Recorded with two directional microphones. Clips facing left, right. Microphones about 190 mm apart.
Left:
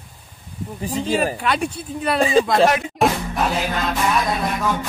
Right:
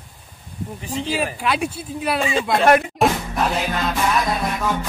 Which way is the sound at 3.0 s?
Centre (ahead or behind).